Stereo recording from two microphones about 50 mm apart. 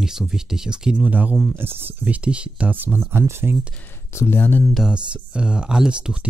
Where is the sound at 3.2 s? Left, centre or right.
Right.